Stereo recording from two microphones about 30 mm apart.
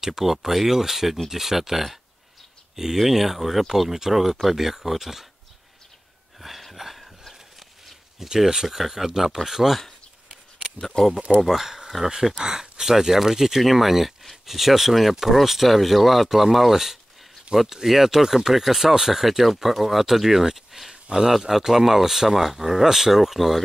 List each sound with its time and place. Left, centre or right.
0.2 s speech: centre
6.4 s a sound: centre
8.2 s speech: centre
11.0 s speech: centre
11.4 s speech: centre